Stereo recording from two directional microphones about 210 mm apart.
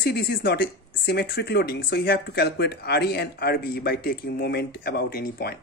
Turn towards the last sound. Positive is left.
turn(degrees=45)  # may be behind; listen again after turning